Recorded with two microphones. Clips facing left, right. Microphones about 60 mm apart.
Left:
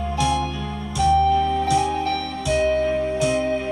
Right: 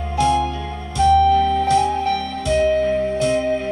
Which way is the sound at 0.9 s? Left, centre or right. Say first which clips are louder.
Right 4 dB; centre.